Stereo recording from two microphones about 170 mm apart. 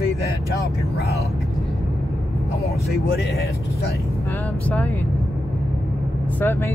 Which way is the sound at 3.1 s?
75° left (ahead or behind).